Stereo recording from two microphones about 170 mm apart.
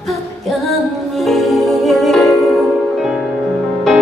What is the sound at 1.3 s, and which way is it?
Music, centre (ahead or behind).